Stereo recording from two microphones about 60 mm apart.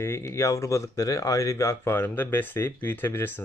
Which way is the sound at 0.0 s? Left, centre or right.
Left.